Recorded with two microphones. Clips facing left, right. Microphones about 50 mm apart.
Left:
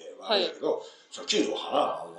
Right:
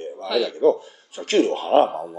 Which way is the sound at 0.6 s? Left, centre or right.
Right.